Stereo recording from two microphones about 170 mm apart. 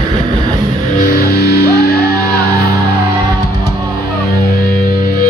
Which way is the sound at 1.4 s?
70° left (ahead or behind).